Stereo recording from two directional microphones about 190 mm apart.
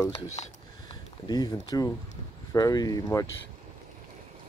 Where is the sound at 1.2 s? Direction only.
20° left (ahead or behind).